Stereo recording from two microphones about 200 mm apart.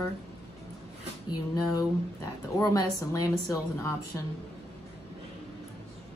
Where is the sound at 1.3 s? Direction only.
20° left (ahead or behind).